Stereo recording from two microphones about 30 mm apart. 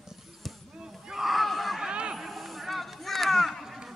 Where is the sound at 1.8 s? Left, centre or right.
Right.